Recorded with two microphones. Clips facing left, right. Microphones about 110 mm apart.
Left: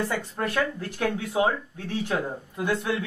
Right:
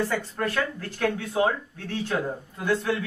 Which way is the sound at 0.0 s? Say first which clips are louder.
Right 1 dB; 15° left (ahead or behind).